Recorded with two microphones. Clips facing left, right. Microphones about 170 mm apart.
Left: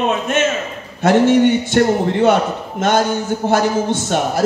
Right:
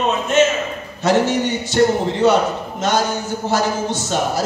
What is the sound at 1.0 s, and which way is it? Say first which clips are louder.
A man's voice: left 5 dB; 55° left (ahead or behind).